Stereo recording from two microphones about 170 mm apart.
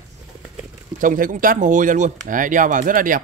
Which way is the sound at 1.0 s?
50° right (ahead or behind).